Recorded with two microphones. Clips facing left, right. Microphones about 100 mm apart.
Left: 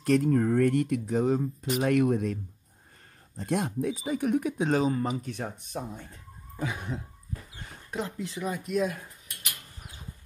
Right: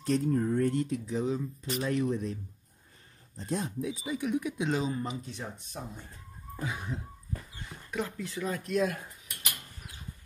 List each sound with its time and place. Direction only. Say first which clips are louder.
0.0 s speech: left 4 dB; 70° left (ahead or behind); by 1.7 s 55° left (ahead or behind)
1.8 s speech: left 6 dB; 65° left (ahead or behind)
3.3 s speech: left 5 dB; 70° left (ahead or behind); by 4.9 s 45° left (ahead or behind)
4.9 s speech: left 6 dB; 60° left (ahead or behind)
7.9 s speech: left 1 dB; 25° left (ahead or behind)
8.7 s speech: left 1 dB; 5° left (ahead or behind)